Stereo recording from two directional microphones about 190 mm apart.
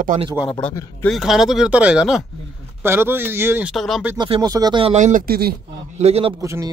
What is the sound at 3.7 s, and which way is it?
Speech, centre (ahead or behind).